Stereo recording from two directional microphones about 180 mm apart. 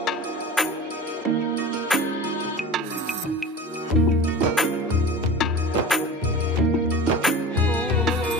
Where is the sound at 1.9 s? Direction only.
Centre (ahead or behind).